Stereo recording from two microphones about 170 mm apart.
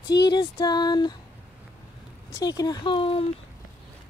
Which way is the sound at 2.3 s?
20° left (ahead or behind).